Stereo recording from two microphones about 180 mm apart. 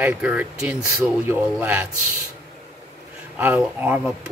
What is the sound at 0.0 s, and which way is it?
Speech, 10° right (ahead or behind).